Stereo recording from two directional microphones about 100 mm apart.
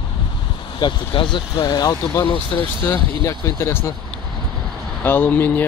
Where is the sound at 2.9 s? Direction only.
30° left (ahead or behind).